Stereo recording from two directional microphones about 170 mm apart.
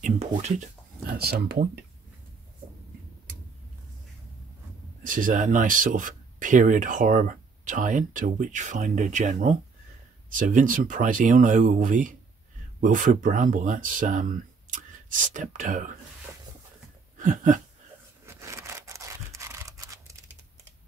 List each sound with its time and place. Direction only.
0.0 s speech: 40° right (ahead or behind)
1.1 s speech: 65° right (ahead or behind)
5.0 s speech: 50° right (ahead or behind)
16.3 s a sound: 15° right (ahead or behind)
17.2 s a sound: 45° right (ahead or behind)
18.2 s scratch: 15° right (ahead or behind)